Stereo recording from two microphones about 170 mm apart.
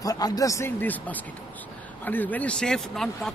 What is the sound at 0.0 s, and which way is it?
Speech, 20° left (ahead or behind).